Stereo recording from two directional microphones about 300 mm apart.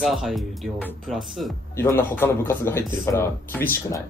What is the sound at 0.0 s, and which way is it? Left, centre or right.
Speech, centre.